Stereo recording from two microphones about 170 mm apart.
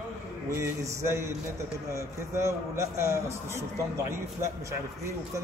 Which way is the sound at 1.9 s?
15° right (ahead or behind).